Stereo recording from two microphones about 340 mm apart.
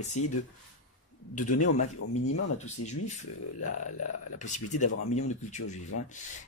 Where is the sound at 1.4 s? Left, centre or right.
Left.